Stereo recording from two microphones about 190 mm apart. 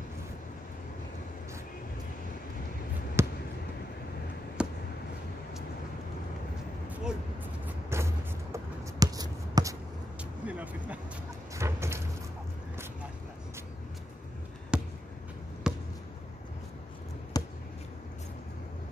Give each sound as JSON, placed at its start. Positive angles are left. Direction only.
{"t": 3.2, "sound": "basketball bounce", "side_deg": -15}
{"t": 4.6, "sound": "basketball bounce", "side_deg": -5}
{"t": 7.6, "sound": "vehicle", "side_deg": -15}
{"t": 9.0, "sound": "writing", "side_deg": -20}
{"t": 10.4, "sound": "vehicle", "side_deg": -5}
{"t": 11.5, "sound": "a sound", "side_deg": -15}
{"t": 14.7, "sound": "basketball bounce", "side_deg": -5}
{"t": 17.3, "sound": "a sound", "side_deg": 20}